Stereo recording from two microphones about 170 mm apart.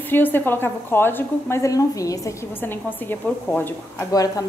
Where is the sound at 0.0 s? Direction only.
10° left (ahead or behind).